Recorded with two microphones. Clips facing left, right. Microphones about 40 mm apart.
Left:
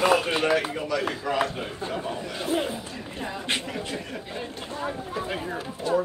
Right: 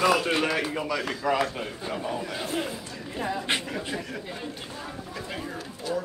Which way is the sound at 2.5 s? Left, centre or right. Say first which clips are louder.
Left 4 dB; left.